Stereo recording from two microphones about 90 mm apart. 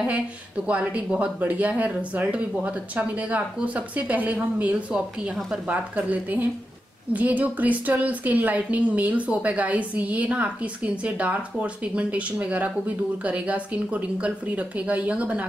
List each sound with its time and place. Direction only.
0.7 s a woman's voice: 15° right (ahead or behind)
4.9 s a woman's voice: 5° right (ahead or behind)
5.7 s a woman's voice: 15° right (ahead or behind)